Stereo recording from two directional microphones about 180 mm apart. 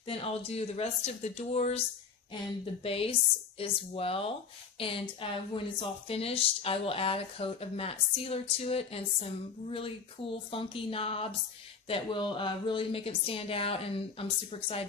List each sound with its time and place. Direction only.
0.0 s speech: 30° left (ahead or behind)